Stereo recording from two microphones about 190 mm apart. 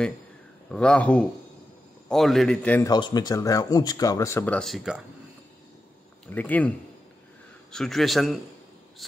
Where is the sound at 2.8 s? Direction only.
20° left (ahead or behind); by 5.0 s centre (ahead or behind).